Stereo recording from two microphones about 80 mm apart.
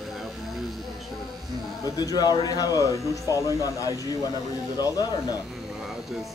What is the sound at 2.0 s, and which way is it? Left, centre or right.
Speech, left.